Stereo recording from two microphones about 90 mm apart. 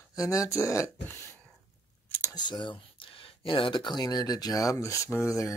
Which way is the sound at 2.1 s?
20° left (ahead or behind).